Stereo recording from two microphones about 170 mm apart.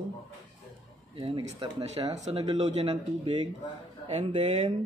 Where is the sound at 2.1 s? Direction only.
40° right (ahead or behind).